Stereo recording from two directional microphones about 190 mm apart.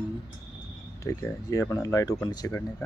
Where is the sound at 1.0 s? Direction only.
15° left (ahead or behind).